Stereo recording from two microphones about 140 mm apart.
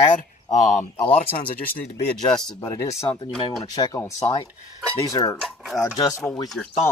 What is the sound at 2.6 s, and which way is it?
Speech, 25° left (ahead or behind).